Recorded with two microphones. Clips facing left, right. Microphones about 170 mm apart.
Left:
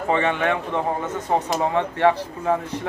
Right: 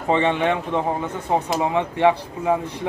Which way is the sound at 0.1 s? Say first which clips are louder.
Right 2 dB; 20° right (ahead or behind).